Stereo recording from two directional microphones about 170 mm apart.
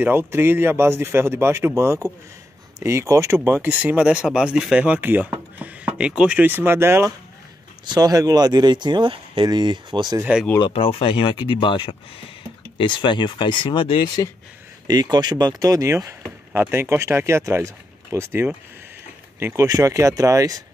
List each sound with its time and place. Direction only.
0.0 s speech: 10° right (ahead or behind)
10.6 s speech: 35° left (ahead or behind)
14.9 s speech: 25° right (ahead or behind)